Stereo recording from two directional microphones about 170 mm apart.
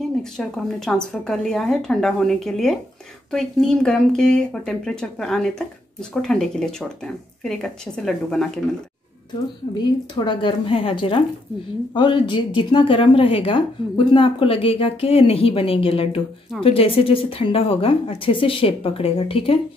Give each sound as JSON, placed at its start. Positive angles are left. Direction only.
{"t": 0.2, "sound": "speech", "side_deg": 5}
{"t": 9.8, "sound": "a woman's voice", "side_deg": 25}